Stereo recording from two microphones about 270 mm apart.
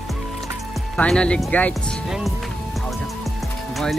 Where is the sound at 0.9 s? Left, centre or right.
Centre.